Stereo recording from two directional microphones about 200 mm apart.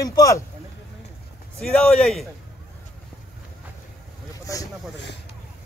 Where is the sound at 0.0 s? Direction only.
15° left (ahead or behind).